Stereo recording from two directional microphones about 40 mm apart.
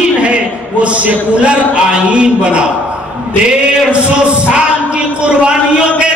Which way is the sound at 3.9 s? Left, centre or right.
Right.